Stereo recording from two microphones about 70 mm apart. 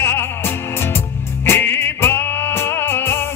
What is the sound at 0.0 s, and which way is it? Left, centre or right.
Music, left.